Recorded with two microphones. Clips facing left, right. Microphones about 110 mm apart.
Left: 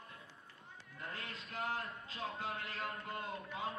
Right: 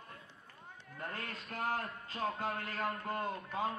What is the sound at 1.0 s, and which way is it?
A man's voice, 50° right (ahead or behind).